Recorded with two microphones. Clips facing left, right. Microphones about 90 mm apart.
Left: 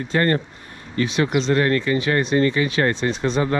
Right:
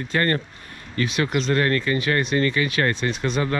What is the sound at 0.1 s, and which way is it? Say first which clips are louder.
Speech: left 3 dB; 30° left (ahead or behind).